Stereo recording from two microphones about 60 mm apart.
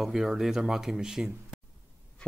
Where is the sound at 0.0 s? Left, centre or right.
Centre.